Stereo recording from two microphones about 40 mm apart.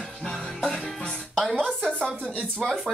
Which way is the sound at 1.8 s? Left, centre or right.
Left.